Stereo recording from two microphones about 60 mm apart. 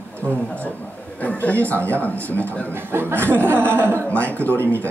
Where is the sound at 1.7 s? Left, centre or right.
Right.